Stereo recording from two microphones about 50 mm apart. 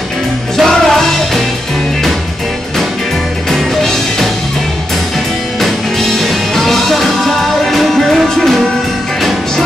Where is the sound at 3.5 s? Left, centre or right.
Centre.